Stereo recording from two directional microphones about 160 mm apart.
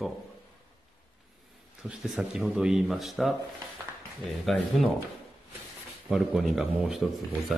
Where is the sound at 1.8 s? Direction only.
5° right (ahead or behind).